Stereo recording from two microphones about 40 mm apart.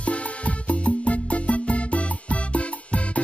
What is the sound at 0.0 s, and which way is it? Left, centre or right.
Music, left.